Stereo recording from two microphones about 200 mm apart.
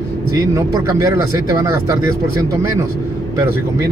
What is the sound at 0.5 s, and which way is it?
Speech, 15° right (ahead or behind).